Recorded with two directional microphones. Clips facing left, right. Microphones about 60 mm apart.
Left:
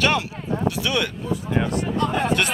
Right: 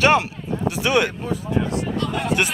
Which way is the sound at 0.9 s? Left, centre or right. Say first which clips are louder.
Right 9 dB; right.